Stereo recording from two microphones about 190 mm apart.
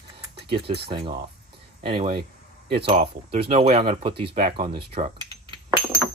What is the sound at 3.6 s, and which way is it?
Speech, 30° right (ahead or behind).